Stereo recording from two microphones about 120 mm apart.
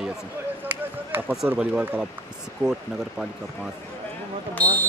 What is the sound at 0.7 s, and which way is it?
Chop, 15° right (ahead or behind).